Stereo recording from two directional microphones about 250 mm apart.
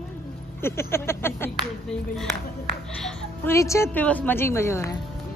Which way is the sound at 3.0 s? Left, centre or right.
Centre.